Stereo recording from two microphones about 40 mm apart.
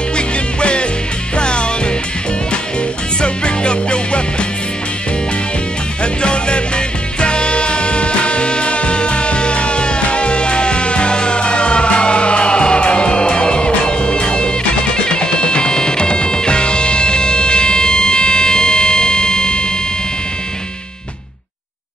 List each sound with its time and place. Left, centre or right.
0.1 s music: left
3.2 s music: left
6.2 s music: left